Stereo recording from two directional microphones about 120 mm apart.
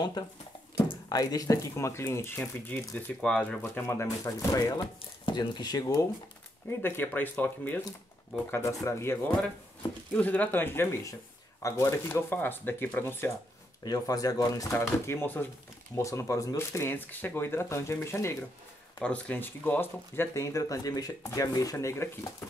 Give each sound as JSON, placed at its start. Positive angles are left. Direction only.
{"t": 0.8, "sound": "speech", "side_deg": 35}
{"t": 3.2, "sound": "speech", "side_deg": 5}
{"t": 3.6, "sound": "speech", "side_deg": 20}
{"t": 5.2, "sound": "speech", "side_deg": 40}
{"t": 6.8, "sound": "speech", "side_deg": 15}
{"t": 13.8, "sound": "speech", "side_deg": 30}
{"t": 18.9, "sound": "speech", "side_deg": 10}